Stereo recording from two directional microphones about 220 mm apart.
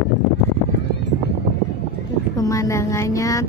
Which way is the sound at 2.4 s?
15° left (ahead or behind).